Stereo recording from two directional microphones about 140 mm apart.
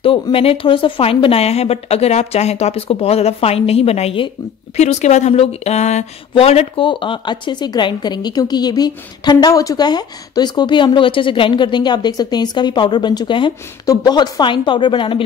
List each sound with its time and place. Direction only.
0.0 s speech: 40° left (ahead or behind)
4.7 s speech: 55° left (ahead or behind)
6.9 s a woman's voice: 35° left (ahead or behind)